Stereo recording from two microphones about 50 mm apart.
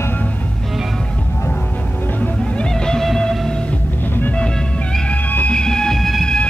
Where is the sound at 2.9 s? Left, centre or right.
Centre.